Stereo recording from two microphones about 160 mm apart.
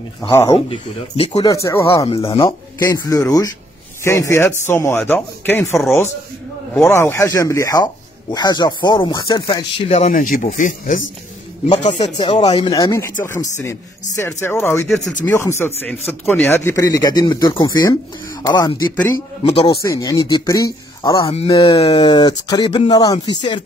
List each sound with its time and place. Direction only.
0.3 s speech: 20° left (ahead or behind)
0.7 s speech: 40° left (ahead or behind)
1.4 s speech: 20° left (ahead or behind)
2.0 s speech: 35° left (ahead or behind)
2.9 s speech: 20° left (ahead or behind)
6.9 s speech: 15° left (ahead or behind); by 10.1 s 40° left (ahead or behind)
10.1 s speech: 55° left (ahead or behind)
12.2 s speech: 30° left (ahead or behind)
19.8 s speech: 20° left (ahead or behind)